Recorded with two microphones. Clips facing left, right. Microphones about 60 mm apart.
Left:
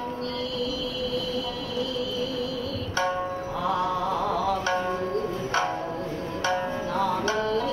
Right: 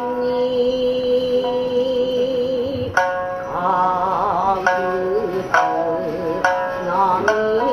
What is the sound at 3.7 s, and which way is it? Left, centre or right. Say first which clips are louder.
Music: right 9 dB; right.